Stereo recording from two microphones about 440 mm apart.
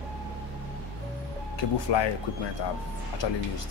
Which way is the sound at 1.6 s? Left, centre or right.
Left.